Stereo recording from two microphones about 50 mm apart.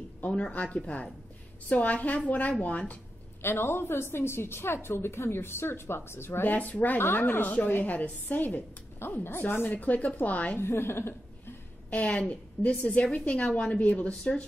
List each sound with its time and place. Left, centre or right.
0.3 s a woman's voice: left
3.4 s speech: left
6.5 s a woman's voice: left
7.0 s a woman's voice: left
9.0 s speech: left
9.4 s a woman's voice: left
10.6 s speech: left
11.9 s a woman's voice: left